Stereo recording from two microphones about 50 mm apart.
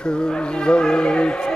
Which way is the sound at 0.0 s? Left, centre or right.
Centre.